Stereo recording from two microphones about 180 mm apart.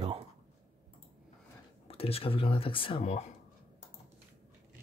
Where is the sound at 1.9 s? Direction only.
30° left (ahead or behind).